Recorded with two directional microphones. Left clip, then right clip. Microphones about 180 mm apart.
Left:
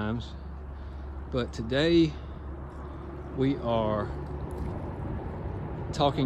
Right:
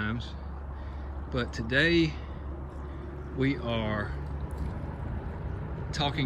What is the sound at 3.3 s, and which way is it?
Speech, 10° left (ahead or behind).